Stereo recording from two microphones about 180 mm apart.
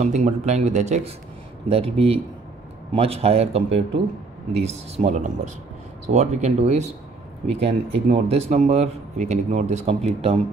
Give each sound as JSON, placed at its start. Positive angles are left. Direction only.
{"t": 0.0, "sound": "a man's voice", "side_deg": -40}